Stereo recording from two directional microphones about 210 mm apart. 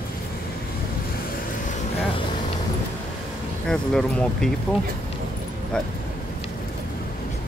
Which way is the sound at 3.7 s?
5° left (ahead or behind).